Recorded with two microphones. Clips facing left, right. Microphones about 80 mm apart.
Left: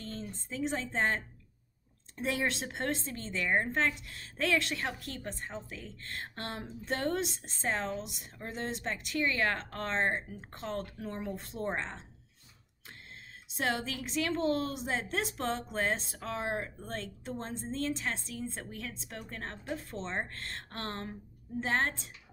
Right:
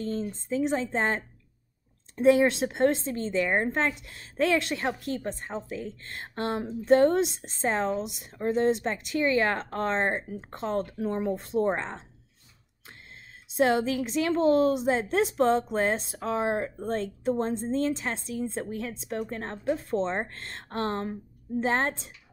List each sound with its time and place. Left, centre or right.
0.0 s speech: right
13.6 s speech: right